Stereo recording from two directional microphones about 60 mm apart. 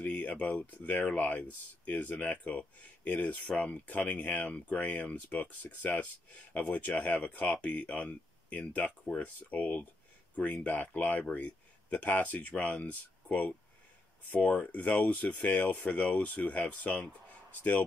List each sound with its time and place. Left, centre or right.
0.0 s speech: left